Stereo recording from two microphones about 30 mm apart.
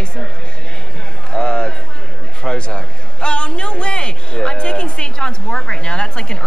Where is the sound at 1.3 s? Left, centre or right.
Left.